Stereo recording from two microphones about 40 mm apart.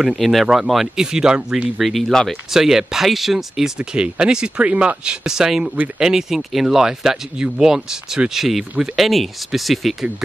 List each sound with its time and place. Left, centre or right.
0.2 s speech: centre
1.0 s speech: centre
1.8 s speech: centre
2.5 s speech: centre
3.7 s speech: right; by 9.9 s centre